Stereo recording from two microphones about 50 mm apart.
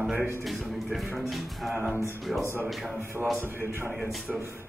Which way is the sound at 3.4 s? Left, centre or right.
Right.